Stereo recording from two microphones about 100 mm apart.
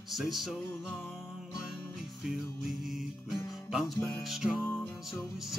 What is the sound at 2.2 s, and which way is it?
Music, 5° right (ahead or behind).